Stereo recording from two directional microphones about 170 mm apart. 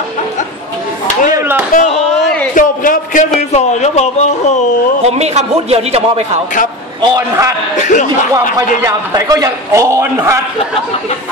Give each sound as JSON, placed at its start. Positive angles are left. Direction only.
{"t": 1.3, "sound": "chop", "side_deg": -15}
{"t": 1.7, "sound": "speech", "side_deg": 40}
{"t": 2.5, "sound": "a man's voice", "side_deg": 55}
{"t": 3.3, "sound": "speech", "side_deg": 40}
{"t": 5.0, "sound": "a man's voice", "side_deg": -40}
{"t": 7.0, "sound": "a man's voice", "side_deg": -20}
{"t": 7.9, "sound": "speech", "side_deg": 45}
{"t": 8.8, "sound": "a man's voice", "side_deg": -20}